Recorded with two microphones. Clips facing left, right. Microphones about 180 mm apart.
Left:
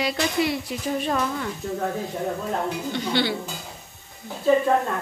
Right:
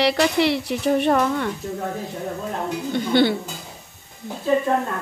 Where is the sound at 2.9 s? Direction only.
50° right (ahead or behind).